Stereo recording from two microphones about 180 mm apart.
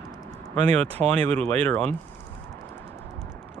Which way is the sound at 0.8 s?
35° right (ahead or behind).